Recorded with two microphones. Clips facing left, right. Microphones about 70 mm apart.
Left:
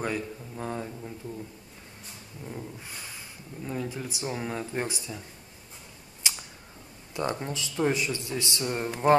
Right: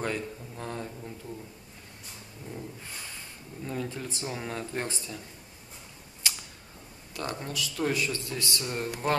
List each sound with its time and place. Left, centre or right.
0.0 s speech: centre
2.5 s speech: centre
6.2 s a sound: centre
7.2 s speech: left